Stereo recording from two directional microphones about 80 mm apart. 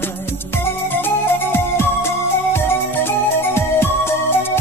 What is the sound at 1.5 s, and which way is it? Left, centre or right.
Music, left.